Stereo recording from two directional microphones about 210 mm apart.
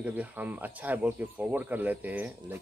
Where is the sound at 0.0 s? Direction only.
5° right (ahead or behind).